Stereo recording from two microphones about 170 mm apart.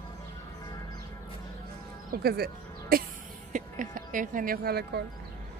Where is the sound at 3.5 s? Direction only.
50° right (ahead or behind); by 5.0 s 65° right (ahead or behind).